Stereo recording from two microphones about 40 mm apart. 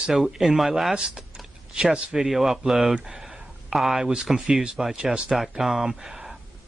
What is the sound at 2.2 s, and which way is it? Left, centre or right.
Speech, centre.